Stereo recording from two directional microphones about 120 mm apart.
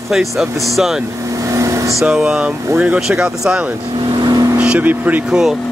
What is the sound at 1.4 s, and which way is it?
Vehicle, 25° right (ahead or behind).